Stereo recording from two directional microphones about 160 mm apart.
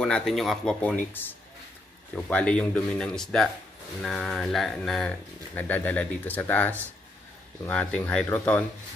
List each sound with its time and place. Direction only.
0.0 s a man's voice: 5° left (ahead or behind)